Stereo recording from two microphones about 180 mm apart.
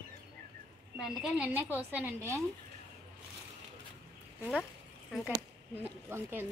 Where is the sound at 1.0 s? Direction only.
5° right (ahead or behind).